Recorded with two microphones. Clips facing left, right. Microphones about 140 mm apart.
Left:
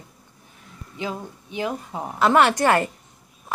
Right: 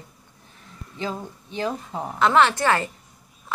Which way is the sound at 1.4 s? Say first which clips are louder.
Even; 10° left (ahead or behind).